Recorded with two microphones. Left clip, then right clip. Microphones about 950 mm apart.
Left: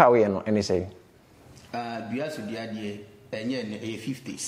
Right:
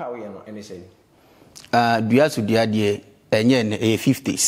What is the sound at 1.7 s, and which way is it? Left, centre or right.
A man's voice, right.